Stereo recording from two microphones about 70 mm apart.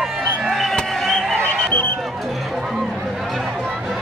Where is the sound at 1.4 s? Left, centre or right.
Left.